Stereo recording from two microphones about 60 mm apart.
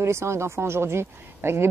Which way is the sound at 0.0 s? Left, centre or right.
Right.